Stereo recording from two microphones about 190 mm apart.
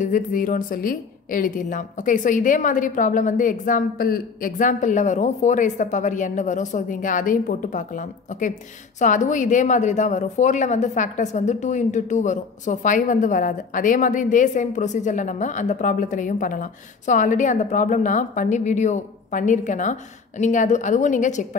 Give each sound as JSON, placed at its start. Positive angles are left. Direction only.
{"t": 0.0, "sound": "a woman's voice", "side_deg": 45}